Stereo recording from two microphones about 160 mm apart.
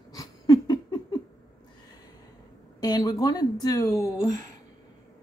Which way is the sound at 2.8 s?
25° left (ahead or behind).